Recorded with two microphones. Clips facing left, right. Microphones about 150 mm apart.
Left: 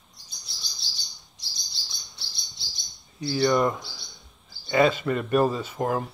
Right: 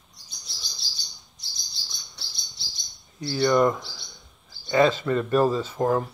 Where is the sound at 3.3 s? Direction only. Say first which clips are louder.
Right 2 dB; 20° left (ahead or behind).